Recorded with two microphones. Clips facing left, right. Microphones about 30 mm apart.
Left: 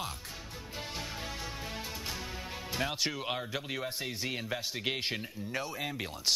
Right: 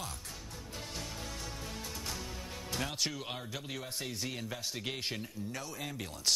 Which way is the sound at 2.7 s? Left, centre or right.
Left.